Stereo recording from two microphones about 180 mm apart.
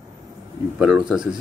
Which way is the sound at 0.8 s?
5° right (ahead or behind).